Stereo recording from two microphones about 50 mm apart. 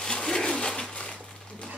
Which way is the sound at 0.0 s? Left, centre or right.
Centre.